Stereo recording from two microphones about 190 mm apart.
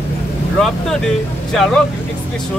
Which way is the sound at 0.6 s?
5° left (ahead or behind).